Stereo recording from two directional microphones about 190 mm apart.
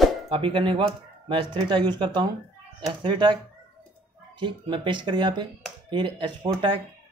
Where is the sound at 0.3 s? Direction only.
25° right (ahead or behind).